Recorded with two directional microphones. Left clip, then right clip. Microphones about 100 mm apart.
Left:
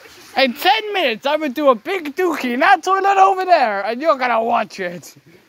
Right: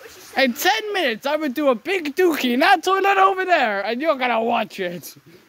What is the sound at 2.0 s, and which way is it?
Speech, 55° right (ahead or behind).